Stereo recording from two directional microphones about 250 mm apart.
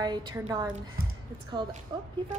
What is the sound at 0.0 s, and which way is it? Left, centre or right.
Speech, centre.